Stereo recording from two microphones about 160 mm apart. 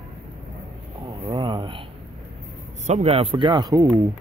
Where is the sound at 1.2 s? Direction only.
30° right (ahead or behind).